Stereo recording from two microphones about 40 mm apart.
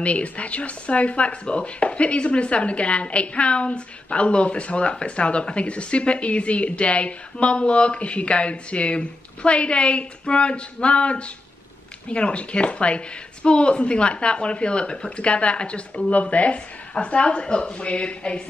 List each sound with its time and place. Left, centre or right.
0.0 s speech: left